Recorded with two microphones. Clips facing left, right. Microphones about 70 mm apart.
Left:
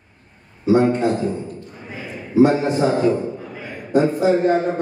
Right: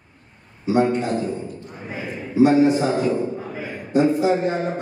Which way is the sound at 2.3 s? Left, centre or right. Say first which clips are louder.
Even; left.